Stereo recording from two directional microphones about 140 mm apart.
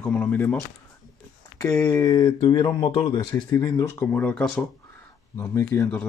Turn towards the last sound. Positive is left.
turn(degrees=20)  # may be behind; listen again after turning